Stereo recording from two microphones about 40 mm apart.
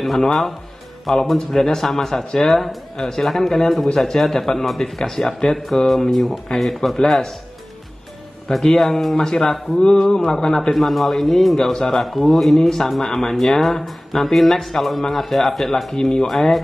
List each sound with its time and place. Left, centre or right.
0.0 s a man's voice: centre
8.6 s a man's voice: centre